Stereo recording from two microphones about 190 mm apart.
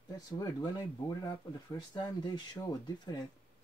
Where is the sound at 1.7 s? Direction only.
20° left (ahead or behind).